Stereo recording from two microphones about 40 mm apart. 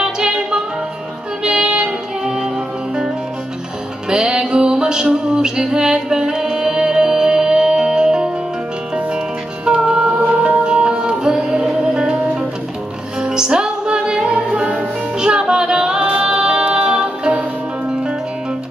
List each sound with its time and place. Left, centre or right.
0.0 s music: centre
4.1 s music: right
9.8 s music: right
13.2 s music: centre